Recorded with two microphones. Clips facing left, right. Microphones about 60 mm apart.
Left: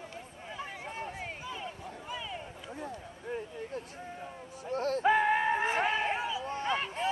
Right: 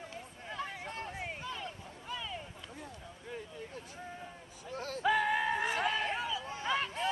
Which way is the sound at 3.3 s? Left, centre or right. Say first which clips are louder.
Left 7 dB; left.